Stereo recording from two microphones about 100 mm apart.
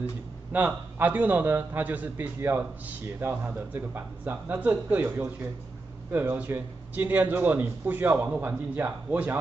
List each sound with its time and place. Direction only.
0.5 s a man's voice: 15° right (ahead or behind)